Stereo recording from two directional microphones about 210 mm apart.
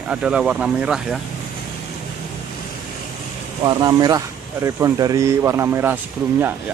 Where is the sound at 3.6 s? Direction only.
20° right (ahead or behind).